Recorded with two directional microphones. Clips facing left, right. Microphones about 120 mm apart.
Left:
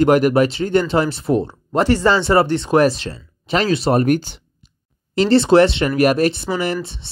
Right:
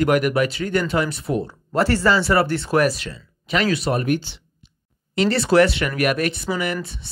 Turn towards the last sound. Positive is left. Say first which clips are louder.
# left 3 dB
turn(degrees=30)  # may be behind; listen again after turning